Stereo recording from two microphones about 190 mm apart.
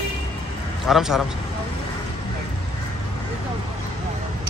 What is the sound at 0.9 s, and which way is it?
Speech, centre (ahead or behind).